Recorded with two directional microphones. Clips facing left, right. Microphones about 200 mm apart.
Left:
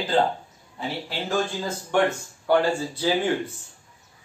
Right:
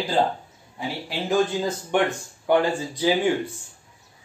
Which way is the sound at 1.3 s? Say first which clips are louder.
Right 5 dB; 15° right (ahead or behind).